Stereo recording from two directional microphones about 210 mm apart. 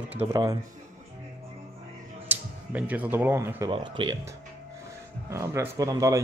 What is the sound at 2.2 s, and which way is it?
Speech, 5° right (ahead or behind).